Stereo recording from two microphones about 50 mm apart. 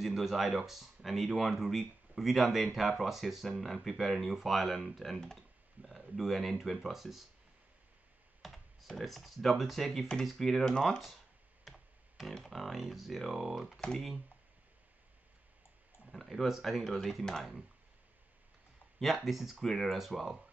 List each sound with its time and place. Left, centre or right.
0.0 s speech: centre
5.8 s a sound: centre
6.1 s speech: centre
8.4 s speech: centre
13.7 s speech: centre
16.1 s speech: centre
18.9 s speech: centre